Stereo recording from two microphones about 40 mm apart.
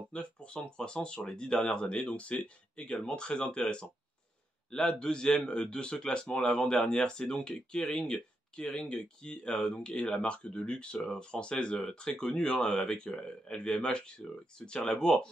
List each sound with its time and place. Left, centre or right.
0.1 s speech: left